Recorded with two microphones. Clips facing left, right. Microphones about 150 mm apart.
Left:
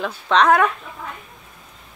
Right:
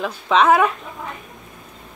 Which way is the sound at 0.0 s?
5° right (ahead or behind).